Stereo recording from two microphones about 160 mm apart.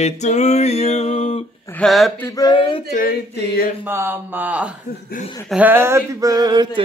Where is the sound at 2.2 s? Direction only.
25° left (ahead or behind).